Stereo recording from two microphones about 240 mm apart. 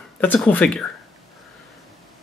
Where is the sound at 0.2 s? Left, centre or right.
Centre.